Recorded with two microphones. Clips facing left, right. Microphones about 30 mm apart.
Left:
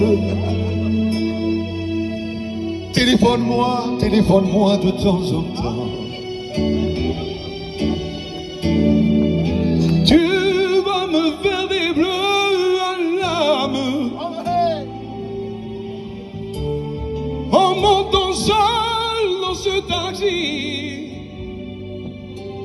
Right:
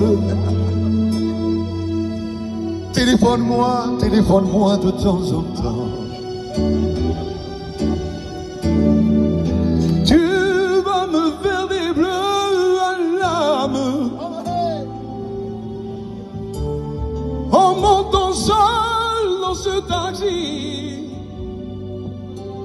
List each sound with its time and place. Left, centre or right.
0.0 s music: left
3.7 s speech: left
6.5 s music: centre
8.6 s music: left
16.6 s music: left